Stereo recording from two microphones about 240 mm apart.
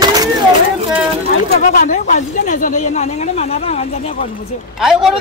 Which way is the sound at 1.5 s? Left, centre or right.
Left.